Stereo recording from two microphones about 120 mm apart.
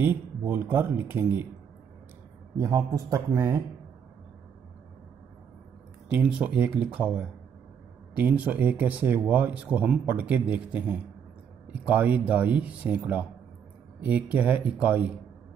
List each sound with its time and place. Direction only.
0.0 s speech: 15° right (ahead or behind)
2.5 s speech: 30° right (ahead or behind)
6.0 s speech: 10° right (ahead or behind)